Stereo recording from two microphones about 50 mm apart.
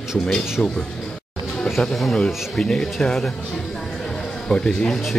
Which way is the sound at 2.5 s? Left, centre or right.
Centre.